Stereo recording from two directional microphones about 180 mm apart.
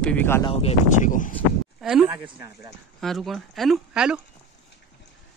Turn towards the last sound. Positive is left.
turn(degrees=-5)  # may be behind; listen again after turning